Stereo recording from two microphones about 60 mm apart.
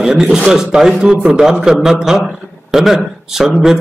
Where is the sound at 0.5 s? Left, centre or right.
Centre.